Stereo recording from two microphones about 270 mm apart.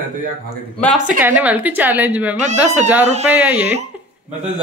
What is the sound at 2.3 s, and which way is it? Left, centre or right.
Speech, right.